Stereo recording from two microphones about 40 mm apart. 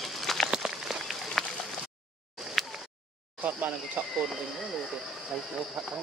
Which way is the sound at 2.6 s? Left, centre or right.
Centre.